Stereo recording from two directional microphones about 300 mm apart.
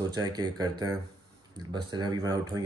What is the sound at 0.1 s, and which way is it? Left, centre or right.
Speech, centre.